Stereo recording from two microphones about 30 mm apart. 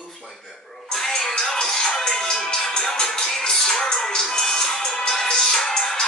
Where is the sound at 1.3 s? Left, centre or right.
Left.